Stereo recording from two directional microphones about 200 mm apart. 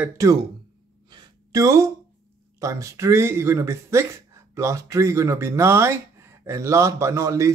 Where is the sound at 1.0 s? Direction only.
20° right (ahead or behind).